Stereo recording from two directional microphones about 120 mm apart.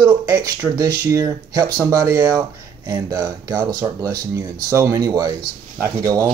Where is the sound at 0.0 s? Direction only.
35° right (ahead or behind).